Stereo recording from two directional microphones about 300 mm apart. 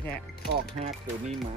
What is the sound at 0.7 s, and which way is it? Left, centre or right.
Speech, right.